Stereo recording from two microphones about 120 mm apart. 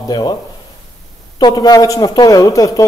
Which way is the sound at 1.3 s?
35° left (ahead or behind).